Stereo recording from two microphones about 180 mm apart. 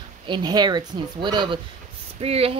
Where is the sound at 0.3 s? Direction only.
25° right (ahead or behind).